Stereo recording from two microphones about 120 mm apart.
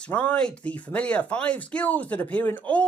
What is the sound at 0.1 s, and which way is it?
Speech, 15° left (ahead or behind).